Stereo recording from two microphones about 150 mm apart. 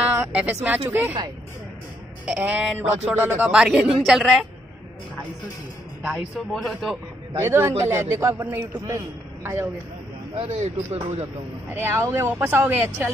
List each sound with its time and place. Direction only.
0.2 s a man's voice: 10° right (ahead or behind)
2.2 s a man's voice: 10° right (ahead or behind)
6.0 s speech: centre (ahead or behind)
7.4 s a man's voice: 15° right (ahead or behind)
10.3 s speech: 45° right (ahead or behind)
11.7 s a man's voice: 15° right (ahead or behind)